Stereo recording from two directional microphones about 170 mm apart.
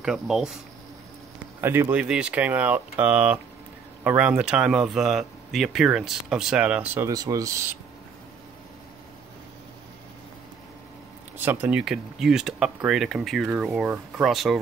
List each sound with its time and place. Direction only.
0.0 s speech: centre (ahead or behind)
1.6 s speech: 15° right (ahead or behind)
7.1 s speech: 20° right (ahead or behind)
11.3 s speech: 10° right (ahead or behind)